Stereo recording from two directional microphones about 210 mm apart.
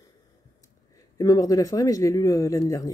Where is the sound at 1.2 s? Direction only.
15° left (ahead or behind).